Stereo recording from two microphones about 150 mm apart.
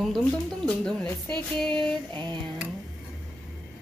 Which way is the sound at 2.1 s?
30° right (ahead or behind).